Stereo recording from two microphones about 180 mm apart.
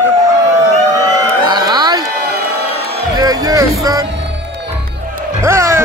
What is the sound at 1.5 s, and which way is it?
Music, 25° right (ahead or behind).